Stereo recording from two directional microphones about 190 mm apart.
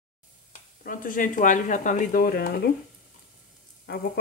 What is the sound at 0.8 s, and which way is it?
Speech, 45° left (ahead or behind).